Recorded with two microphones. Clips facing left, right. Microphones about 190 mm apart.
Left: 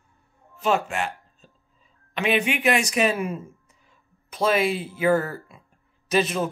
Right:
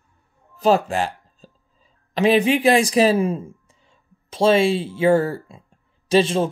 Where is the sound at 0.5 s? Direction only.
35° right (ahead or behind).